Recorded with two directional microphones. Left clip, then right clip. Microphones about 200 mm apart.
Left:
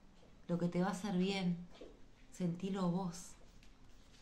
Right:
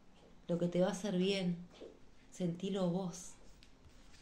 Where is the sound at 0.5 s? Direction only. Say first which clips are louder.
Right 4 dB; 10° left (ahead or behind).